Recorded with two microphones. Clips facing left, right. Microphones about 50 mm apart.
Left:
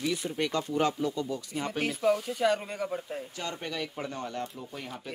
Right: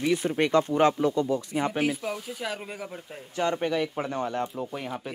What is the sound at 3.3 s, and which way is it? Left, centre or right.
Speech, right.